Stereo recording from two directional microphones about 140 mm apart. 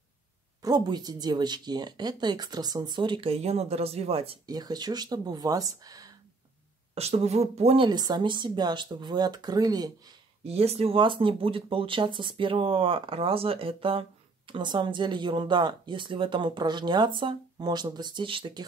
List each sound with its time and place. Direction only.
0.6 s speech: 30° right (ahead or behind); by 4.4 s 45° right (ahead or behind)
4.5 s speech: 30° right (ahead or behind)
7.0 s speech: 50° right (ahead or behind); by 10.1 s 25° right (ahead or behind)
10.4 s speech: 45° right (ahead or behind)